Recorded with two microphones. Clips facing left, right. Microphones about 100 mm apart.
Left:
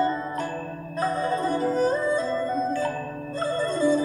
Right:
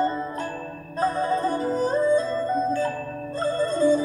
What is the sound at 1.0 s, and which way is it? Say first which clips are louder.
Music: right 2 dB; 35° right (ahead or behind).